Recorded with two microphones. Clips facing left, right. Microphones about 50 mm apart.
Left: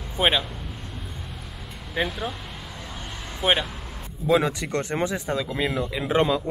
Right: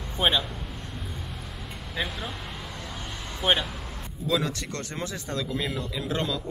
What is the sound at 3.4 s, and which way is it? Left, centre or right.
Speech, centre.